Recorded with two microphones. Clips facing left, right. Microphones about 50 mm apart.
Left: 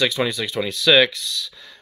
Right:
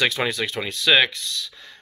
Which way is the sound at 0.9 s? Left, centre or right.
Centre.